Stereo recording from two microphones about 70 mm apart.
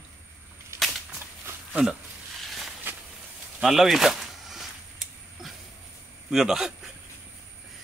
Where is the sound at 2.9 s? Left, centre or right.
Right.